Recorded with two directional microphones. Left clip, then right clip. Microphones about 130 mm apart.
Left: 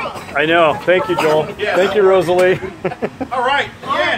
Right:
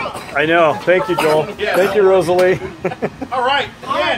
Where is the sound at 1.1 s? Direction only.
70° right (ahead or behind).